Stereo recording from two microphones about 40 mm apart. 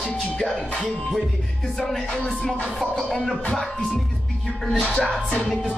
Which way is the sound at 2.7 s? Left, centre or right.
Centre.